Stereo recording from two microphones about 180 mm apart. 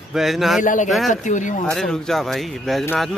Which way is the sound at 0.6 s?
45° left (ahead or behind).